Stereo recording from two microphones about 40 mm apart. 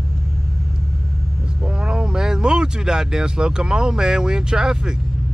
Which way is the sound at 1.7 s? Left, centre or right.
Centre.